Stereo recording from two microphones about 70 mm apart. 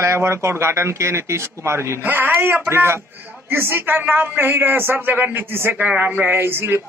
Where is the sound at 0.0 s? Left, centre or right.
Right.